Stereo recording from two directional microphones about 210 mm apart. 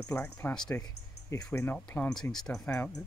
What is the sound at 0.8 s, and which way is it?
Speech, 15° left (ahead or behind).